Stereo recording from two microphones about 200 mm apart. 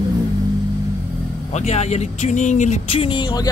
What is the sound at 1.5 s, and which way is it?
A man's voice, 35° left (ahead or behind).